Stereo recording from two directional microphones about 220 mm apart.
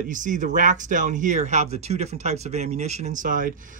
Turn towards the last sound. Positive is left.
turn(degrees=-35)  # may be behind; listen again after turning